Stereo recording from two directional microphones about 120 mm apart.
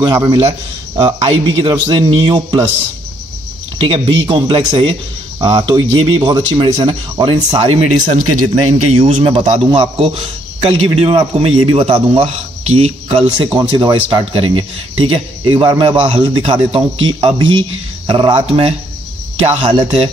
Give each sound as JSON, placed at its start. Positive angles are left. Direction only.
{"t": 0.0, "sound": "speech", "side_deg": -40}
{"t": 3.8, "sound": "a man's voice", "side_deg": -45}
{"t": 5.4, "sound": "a man's voice", "side_deg": -35}
{"t": 12.2, "sound": "speech", "side_deg": -75}
{"t": 13.4, "sound": "speech", "side_deg": -40}
{"t": 14.2, "sound": "a man's voice", "side_deg": -50}
{"t": 18.3, "sound": "speech", "side_deg": -55}
{"t": 19.6, "sound": "speech", "side_deg": -40}